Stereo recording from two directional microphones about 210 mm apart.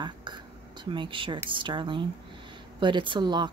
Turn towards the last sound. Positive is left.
turn(degrees=-20)  # may be behind; listen again after turning